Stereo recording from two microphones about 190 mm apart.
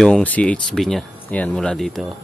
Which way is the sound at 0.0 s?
5° left (ahead or behind).